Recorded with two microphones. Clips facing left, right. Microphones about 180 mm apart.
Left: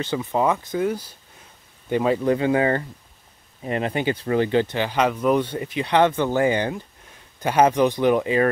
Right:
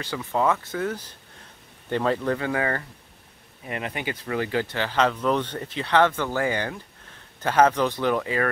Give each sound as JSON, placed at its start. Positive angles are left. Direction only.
{"t": 0.0, "sound": "speech", "side_deg": 20}